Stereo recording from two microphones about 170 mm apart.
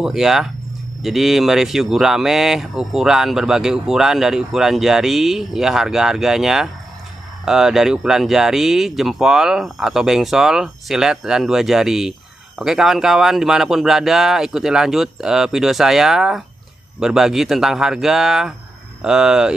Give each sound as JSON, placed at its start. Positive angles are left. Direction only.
{"t": 0.0, "sound": "speech", "side_deg": 0}